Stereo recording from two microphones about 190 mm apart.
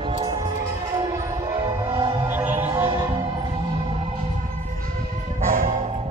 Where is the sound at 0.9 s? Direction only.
20° right (ahead or behind).